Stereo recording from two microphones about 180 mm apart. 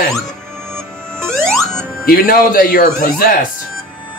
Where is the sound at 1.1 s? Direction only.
5° left (ahead or behind).